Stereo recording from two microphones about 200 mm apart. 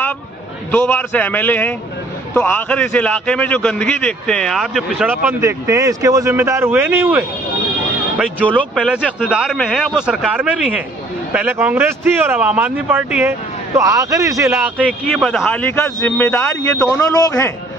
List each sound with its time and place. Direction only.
0.7 s a man's voice: 10° left (ahead or behind)
5.4 s speech: 15° right (ahead or behind)
8.7 s a man's voice: 5° right (ahead or behind)
15.0 s a man's voice: 5° left (ahead or behind)